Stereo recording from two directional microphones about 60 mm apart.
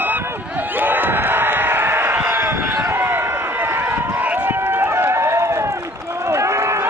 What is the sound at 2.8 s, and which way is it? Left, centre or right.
Run, right.